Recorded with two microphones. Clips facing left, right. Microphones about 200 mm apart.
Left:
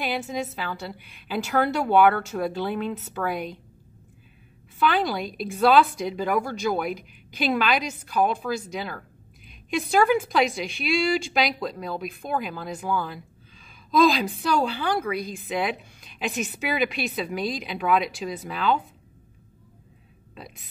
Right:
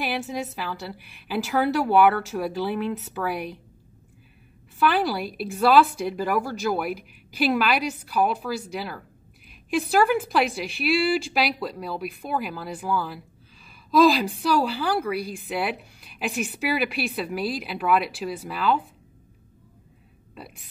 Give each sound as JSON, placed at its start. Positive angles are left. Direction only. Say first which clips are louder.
{"t": 0.0, "sound": "a woman's voice", "louder": "even", "side_deg": -5}
{"t": 4.7, "sound": "a woman's voice", "louder": "right 1 dB", "side_deg": -5}